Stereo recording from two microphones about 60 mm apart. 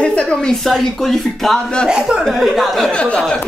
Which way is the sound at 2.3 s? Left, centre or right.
Centre.